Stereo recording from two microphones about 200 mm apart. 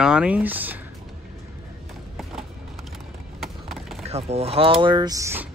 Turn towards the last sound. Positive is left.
turn(degrees=-15)  # may be behind; listen again after turning